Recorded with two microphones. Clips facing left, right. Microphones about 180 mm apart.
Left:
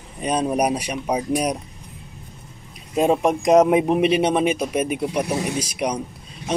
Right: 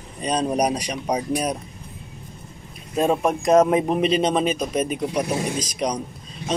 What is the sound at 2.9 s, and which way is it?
A man's voice, 15° left (ahead or behind).